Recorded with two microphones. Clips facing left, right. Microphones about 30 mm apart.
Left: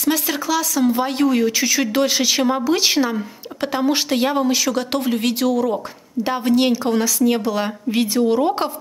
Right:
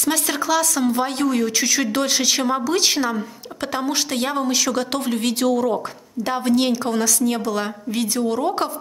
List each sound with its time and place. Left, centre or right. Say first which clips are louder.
0.0 s speech: left 1 dB; centre